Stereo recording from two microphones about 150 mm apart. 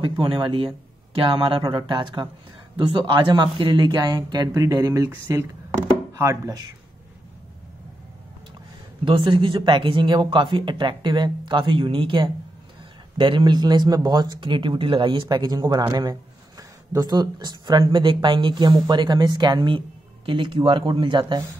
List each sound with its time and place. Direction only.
0.0 s speech: 30° right (ahead or behind)
9.0 s speech: 35° right (ahead or behind)